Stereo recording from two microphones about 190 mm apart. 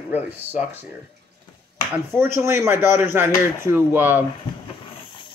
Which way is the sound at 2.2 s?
10° right (ahead or behind).